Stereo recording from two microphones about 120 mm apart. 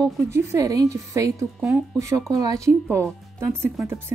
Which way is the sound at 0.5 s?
30° right (ahead or behind).